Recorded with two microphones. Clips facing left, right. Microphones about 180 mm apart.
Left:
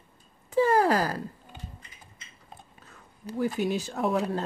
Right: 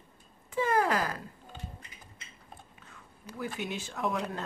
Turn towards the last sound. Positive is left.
turn(degrees=35)  # may be behind; listen again after turning